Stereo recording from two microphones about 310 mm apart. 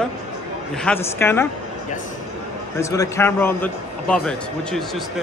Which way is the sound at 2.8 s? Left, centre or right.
Centre.